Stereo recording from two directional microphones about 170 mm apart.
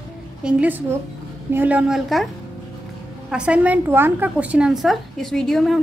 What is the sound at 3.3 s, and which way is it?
A woman's voice, 5° right (ahead or behind).